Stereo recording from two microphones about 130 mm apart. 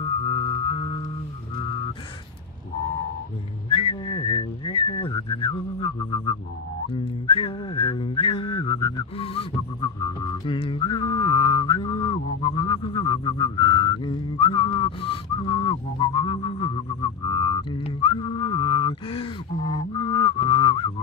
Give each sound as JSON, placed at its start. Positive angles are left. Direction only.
{"t": 0.0, "sound": "music", "side_deg": 35}
{"t": 3.6, "sound": "whistling", "side_deg": 40}
{"t": 9.2, "sound": "music", "side_deg": 45}